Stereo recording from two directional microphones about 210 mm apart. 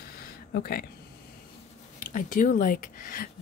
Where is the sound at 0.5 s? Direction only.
45° left (ahead or behind).